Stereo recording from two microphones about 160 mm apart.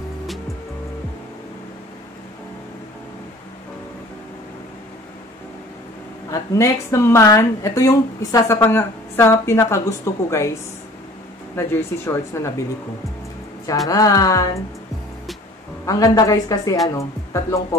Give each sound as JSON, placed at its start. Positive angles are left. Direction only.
{"t": 6.3, "sound": "speech", "side_deg": 20}
{"t": 11.5, "sound": "speech", "side_deg": 15}
{"t": 13.8, "sound": "a woman's voice", "side_deg": 20}
{"t": 15.8, "sound": "a woman's voice", "side_deg": 20}